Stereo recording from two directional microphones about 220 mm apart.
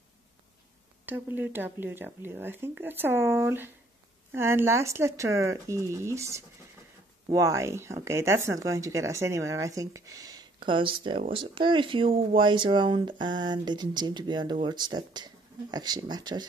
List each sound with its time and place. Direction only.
1.0 s speech: 10° right (ahead or behind)